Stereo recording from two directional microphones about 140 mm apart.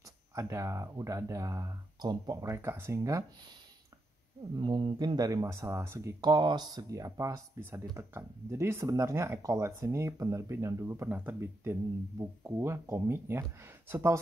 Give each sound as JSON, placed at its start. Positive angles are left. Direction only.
{"t": 0.0, "sound": "speech", "side_deg": -20}
{"t": 4.6, "sound": "speech", "side_deg": -35}
{"t": 6.3, "sound": "speech", "side_deg": -30}